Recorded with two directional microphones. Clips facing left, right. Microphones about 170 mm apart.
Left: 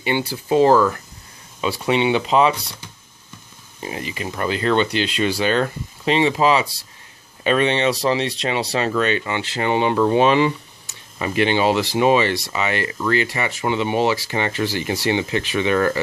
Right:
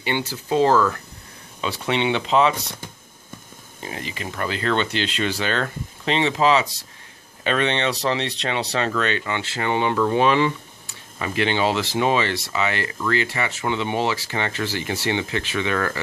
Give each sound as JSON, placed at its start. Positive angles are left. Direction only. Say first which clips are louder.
{"t": 0.0, "sound": "speech", "louder": "left 3 dB", "side_deg": 10}
{"t": 3.8, "sound": "speech", "louder": "left 4 dB", "side_deg": 15}